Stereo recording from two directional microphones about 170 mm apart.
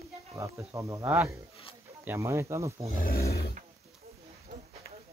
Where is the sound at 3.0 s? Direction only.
60° left (ahead or behind).